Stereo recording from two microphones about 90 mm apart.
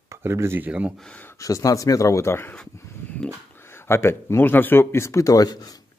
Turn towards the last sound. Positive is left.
turn(degrees=45)  # may be behind; listen again after turning